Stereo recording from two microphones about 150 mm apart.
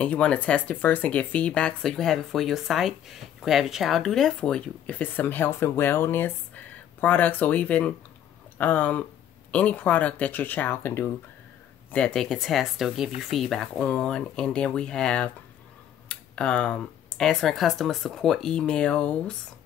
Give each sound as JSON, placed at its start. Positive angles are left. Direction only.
{"t": 0.0, "sound": "speech", "side_deg": 10}